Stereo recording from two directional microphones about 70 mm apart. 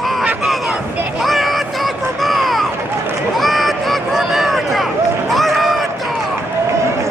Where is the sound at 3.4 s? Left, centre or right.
Centre.